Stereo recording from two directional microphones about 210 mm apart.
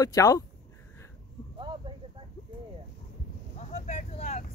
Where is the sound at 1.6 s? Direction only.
20° right (ahead or behind).